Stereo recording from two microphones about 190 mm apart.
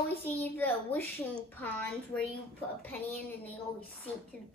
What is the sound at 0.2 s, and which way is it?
A child's voice, 10° left (ahead or behind).